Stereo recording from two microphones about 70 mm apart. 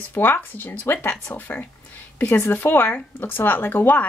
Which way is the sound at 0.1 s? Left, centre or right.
Left.